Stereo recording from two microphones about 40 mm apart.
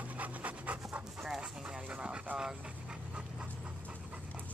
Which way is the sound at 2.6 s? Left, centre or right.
Right.